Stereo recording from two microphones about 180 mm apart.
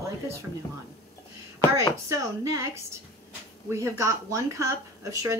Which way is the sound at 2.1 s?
15° right (ahead or behind).